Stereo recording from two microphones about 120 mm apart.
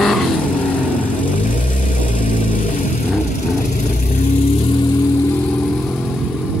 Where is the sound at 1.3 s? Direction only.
90° left.